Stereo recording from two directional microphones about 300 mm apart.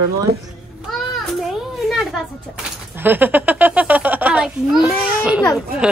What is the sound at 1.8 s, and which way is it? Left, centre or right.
A woman's voice, centre.